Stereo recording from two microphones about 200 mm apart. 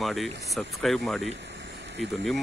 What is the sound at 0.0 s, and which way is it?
Speech, centre (ahead or behind).